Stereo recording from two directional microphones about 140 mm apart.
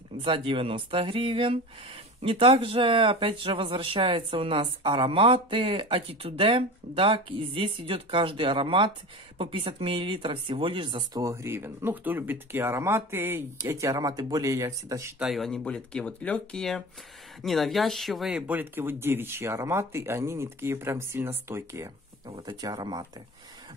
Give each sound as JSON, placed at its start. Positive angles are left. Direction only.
{"t": 0.2, "sound": "speech", "side_deg": -40}
{"t": 11.1, "sound": "speech", "side_deg": -20}
{"t": 15.1, "sound": "speech", "side_deg": 0}